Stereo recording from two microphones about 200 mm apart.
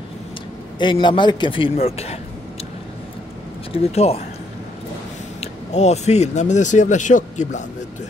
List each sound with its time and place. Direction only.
0.7 s a man's voice: 25° left (ahead or behind)
3.7 s speech: 30° left (ahead or behind)
5.4 s speech: 35° left (ahead or behind)